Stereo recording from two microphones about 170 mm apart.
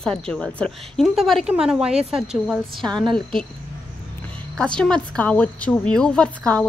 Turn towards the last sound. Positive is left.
turn(degrees=5)  # may be behind; listen again after turning